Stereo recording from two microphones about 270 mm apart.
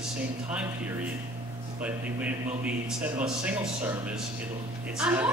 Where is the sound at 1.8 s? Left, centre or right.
Centre.